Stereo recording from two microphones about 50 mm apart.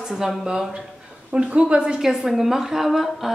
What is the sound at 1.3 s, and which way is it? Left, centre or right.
Speech, right.